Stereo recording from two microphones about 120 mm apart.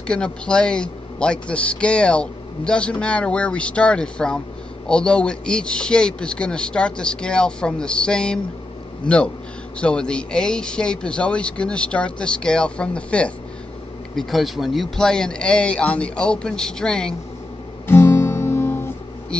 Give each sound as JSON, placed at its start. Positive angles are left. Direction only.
{"t": 0.0, "sound": "a man's voice", "side_deg": 10}
{"t": 17.8, "sound": "guitar", "side_deg": 20}